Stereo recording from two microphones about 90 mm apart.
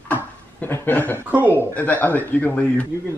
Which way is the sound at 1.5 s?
20° left (ahead or behind).